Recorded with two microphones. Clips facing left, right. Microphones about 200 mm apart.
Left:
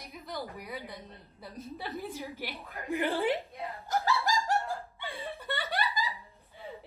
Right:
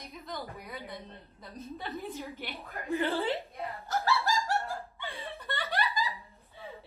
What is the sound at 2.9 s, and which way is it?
Speech, 15° left (ahead or behind).